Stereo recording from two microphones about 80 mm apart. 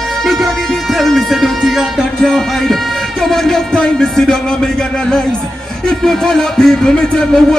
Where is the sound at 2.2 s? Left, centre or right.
Centre.